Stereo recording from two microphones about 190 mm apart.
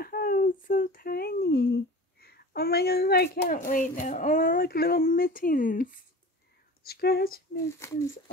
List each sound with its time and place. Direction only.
0.0 s speech: 50° left (ahead or behind)
7.8 s speech: 15° left (ahead or behind)